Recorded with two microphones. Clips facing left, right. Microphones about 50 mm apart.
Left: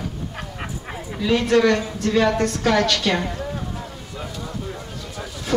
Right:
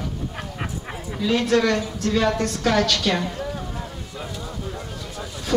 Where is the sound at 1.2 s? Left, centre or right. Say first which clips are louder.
Left 2 dB; left.